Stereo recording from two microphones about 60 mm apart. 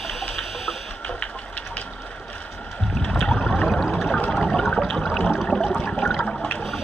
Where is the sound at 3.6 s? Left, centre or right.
Centre.